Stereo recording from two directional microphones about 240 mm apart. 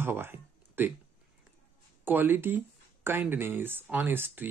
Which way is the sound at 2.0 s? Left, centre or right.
Centre.